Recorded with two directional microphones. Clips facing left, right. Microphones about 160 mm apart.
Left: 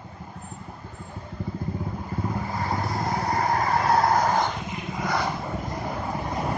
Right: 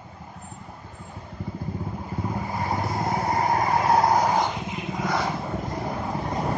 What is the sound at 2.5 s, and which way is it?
Vehicle, 20° right (ahead or behind).